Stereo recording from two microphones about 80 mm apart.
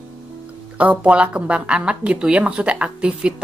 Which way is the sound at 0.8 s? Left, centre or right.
Centre.